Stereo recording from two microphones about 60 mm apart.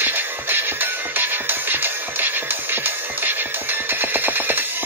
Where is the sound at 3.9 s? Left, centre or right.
Right.